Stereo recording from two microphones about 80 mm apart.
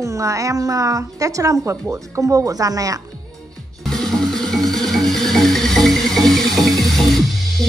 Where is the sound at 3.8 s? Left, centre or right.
Centre.